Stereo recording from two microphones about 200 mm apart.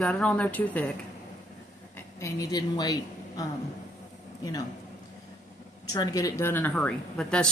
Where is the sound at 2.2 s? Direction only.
15° left (ahead or behind).